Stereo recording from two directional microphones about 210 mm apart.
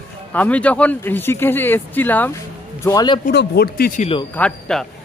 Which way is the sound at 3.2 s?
50° left (ahead or behind).